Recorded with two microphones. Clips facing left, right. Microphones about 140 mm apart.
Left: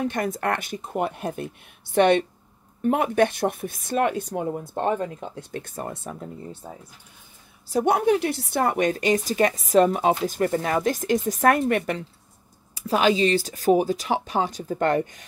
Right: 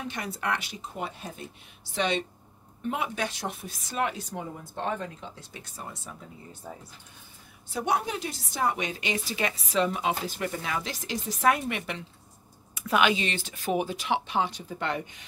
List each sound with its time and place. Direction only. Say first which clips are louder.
0.0 s speech: left 8 dB; 50° left (ahead or behind)
6.6 s speech: left 2 dB; 25° left (ahead or behind)
7.7 s a woman's voice: left 9 dB; 50° left (ahead or behind)
12.7 s speech: left 4 dB; 35° left (ahead or behind)